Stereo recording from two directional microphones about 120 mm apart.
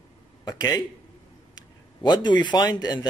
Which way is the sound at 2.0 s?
40° left (ahead or behind).